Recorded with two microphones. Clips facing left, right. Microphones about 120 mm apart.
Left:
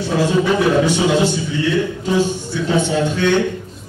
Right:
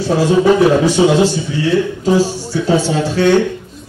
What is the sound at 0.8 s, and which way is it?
A man's voice, 35° right (ahead or behind).